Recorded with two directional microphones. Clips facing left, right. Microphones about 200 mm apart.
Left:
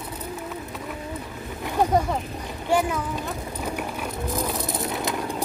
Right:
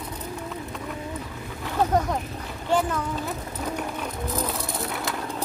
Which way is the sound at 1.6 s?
10° left (ahead or behind).